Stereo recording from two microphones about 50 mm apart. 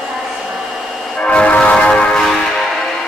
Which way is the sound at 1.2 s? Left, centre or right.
Left.